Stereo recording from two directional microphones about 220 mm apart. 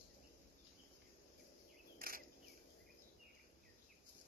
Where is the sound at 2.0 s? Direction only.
40° right (ahead or behind).